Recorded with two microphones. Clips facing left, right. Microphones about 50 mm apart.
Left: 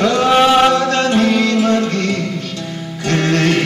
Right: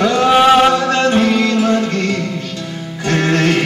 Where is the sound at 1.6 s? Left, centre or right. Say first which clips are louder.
Even; right.